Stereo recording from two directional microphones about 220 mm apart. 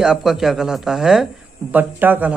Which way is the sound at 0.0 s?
Centre (ahead or behind).